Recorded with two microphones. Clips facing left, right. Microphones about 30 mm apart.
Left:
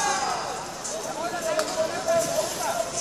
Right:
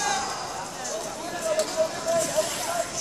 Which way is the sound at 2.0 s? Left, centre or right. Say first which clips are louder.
Left 2 dB; left.